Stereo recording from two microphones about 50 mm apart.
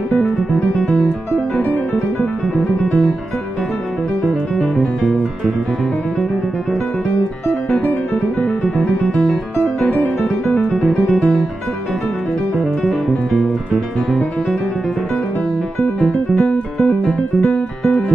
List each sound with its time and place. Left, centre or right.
0.4 s music: centre
1.3 s music: left
4.3 s music: centre
8.4 s music: centre
10.7 s music: centre
12.5 s music: centre
16.3 s music: centre